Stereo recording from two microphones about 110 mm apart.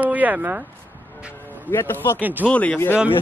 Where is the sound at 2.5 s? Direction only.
10° left (ahead or behind).